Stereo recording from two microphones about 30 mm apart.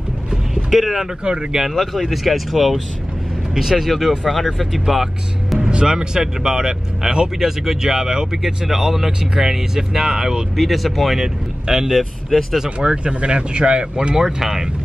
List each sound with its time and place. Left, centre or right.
0.7 s speech: centre
0.9 s speech: right
2.0 s speech: centre
4.8 s speech: centre
5.6 s speech: right
8.6 s speech: centre
10.5 s speech: centre
11.6 s speech: right
11.9 s speech: centre
12.6 s speech: right
14.1 s speech: centre